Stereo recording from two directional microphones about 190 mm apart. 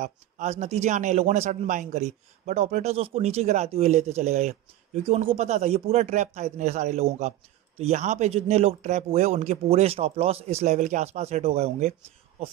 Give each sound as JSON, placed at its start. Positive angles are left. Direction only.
{"t": 0.0, "sound": "speech", "side_deg": -35}